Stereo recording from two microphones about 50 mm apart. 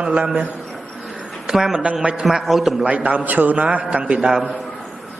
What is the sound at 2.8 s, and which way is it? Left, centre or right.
A man's voice, right.